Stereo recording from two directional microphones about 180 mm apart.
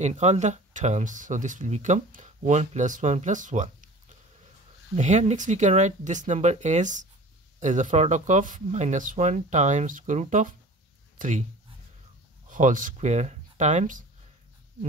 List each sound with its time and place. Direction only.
0.0 s speech: 40° right (ahead or behind)
4.9 s speech: 40° right (ahead or behind)
12.4 s speech: 45° right (ahead or behind)